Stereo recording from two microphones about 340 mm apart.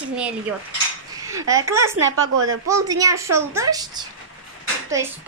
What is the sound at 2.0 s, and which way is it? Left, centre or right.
Speech, right.